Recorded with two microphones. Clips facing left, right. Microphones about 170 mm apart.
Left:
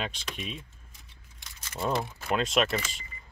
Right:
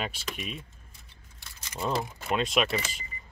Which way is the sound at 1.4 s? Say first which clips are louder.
Left 1 dB; centre (ahead or behind).